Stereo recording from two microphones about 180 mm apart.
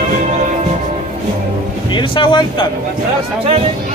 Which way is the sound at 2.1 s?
25° left (ahead or behind).